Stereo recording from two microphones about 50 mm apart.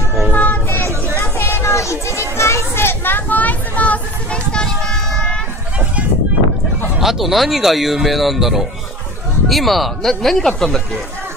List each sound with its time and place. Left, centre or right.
0.3 s vehicle: left
0.7 s a sound: left
1.1 s children playing: left; by 5.4 s centre
7.0 s speech: centre